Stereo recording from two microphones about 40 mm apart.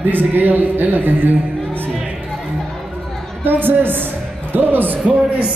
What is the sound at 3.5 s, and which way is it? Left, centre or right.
A man's voice, right.